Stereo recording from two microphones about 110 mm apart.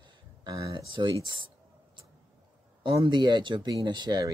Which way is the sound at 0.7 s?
45° right (ahead or behind).